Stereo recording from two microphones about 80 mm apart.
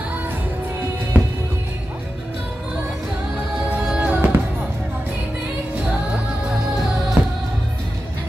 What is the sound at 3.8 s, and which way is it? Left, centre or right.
Music, centre.